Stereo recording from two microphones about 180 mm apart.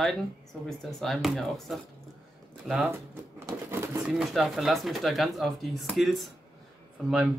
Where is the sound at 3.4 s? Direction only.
15° right (ahead or behind).